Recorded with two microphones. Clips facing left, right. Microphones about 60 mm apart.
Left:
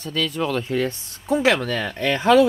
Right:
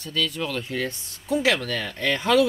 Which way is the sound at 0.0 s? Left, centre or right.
Left.